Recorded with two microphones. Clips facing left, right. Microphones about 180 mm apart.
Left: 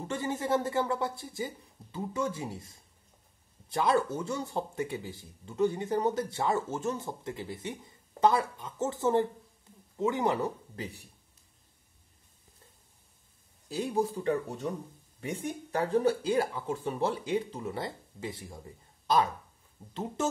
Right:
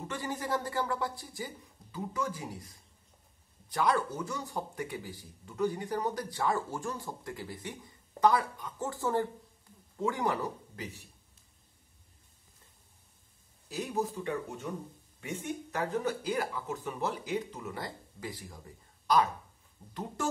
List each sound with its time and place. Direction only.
0.1 s speech: 25° left (ahead or behind)
13.7 s speech: 30° left (ahead or behind)
19.9 s speech: 25° left (ahead or behind)